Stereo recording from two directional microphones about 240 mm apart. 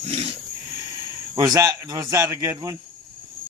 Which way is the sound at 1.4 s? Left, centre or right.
Centre.